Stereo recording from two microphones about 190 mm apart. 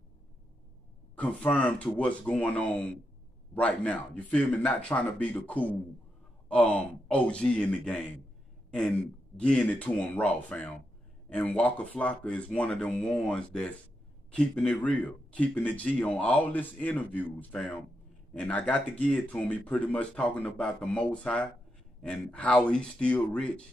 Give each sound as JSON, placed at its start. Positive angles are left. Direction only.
{"t": 1.1, "sound": "speech", "side_deg": 5}
{"t": 8.6, "sound": "a sound", "side_deg": 5}
{"t": 9.4, "sound": "speech", "side_deg": 5}